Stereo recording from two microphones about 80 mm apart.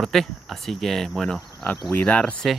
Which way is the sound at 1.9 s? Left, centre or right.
Left.